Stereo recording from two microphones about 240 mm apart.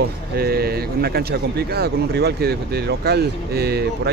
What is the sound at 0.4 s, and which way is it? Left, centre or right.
Speech, right.